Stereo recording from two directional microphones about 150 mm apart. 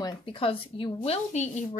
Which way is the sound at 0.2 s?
35° left (ahead or behind).